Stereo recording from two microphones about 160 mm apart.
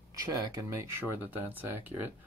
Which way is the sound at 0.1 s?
20° right (ahead or behind).